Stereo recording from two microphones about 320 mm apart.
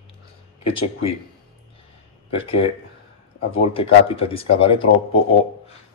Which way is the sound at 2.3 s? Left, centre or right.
Centre.